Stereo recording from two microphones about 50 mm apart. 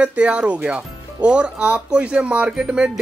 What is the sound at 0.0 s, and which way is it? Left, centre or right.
Speech, right.